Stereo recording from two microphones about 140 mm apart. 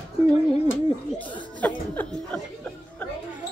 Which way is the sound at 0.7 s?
10° left (ahead or behind).